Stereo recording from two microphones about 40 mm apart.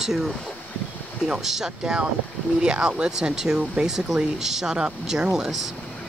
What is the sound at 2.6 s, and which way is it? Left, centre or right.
Speech, right.